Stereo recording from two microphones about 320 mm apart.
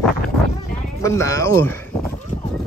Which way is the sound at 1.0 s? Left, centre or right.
Centre.